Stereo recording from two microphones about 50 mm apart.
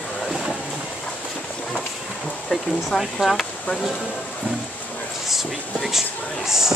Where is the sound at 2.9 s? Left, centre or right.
Centre.